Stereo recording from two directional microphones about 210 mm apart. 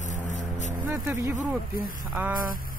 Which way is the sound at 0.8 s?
10° right (ahead or behind).